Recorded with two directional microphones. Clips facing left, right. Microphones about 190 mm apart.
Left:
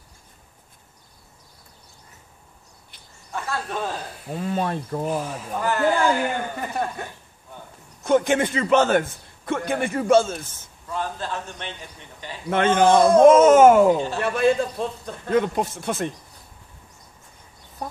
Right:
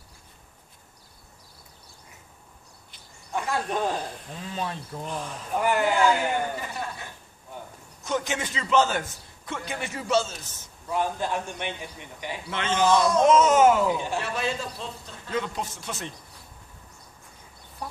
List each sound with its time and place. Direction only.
3.3 s a man's voice: 15° right (ahead or behind)
4.3 s a man's voice: 55° left (ahead or behind)
5.1 s speech: 5° left (ahead or behind)
5.6 s a man's voice: 15° right (ahead or behind)
6.6 s a man's voice: 55° left (ahead or behind)
10.9 s a man's voice: 15° right (ahead or behind)
12.4 s a man's voice: 50° left (ahead or behind)